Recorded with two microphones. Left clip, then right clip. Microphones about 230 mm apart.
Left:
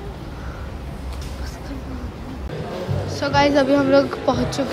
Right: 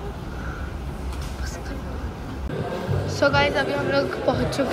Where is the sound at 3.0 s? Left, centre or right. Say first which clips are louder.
Left 2 dB; centre.